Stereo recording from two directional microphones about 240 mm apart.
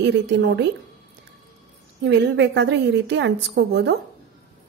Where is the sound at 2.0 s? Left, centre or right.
Right.